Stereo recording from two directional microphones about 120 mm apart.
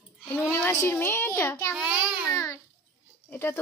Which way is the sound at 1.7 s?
5° right (ahead or behind).